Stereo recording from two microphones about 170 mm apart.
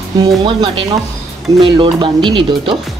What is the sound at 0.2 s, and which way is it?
Speech, 25° right (ahead or behind).